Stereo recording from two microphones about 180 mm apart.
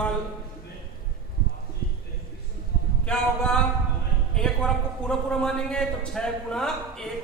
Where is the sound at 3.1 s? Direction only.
5° left (ahead or behind).